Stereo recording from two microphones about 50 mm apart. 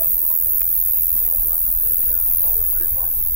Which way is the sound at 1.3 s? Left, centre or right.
Centre.